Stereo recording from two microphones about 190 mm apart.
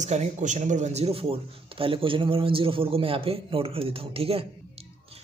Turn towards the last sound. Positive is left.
turn(degrees=-30)  # may be behind; listen again after turning